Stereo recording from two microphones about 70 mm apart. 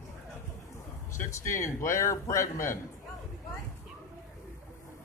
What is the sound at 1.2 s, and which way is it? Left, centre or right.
A man's voice, left.